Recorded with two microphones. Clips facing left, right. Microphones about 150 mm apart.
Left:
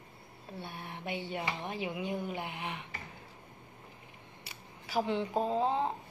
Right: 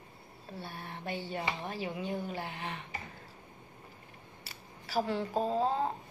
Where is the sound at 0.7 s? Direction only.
15° left (ahead or behind).